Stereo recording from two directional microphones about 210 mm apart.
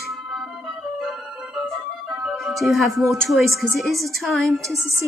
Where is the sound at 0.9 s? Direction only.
Centre (ahead or behind).